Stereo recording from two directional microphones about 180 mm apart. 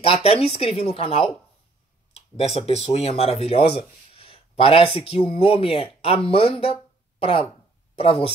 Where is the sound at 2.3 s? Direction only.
35° left (ahead or behind).